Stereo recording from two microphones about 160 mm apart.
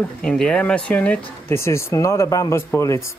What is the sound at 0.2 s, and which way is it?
Speech, 5° left (ahead or behind).